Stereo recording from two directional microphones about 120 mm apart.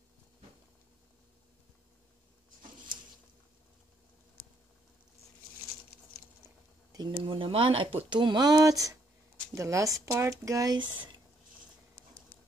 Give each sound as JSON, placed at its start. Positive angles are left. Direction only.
{"t": 6.9, "sound": "speech", "side_deg": -40}